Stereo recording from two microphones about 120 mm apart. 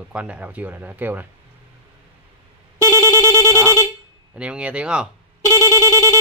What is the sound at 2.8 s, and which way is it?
Telephone bell ringing, 30° left (ahead or behind).